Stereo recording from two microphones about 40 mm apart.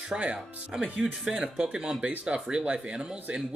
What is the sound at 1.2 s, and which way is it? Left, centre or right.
Speech, right.